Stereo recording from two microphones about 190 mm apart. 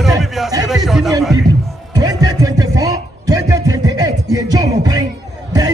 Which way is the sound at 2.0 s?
20° right (ahead or behind).